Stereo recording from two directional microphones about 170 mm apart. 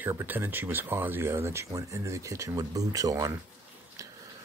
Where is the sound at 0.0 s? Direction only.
15° right (ahead or behind).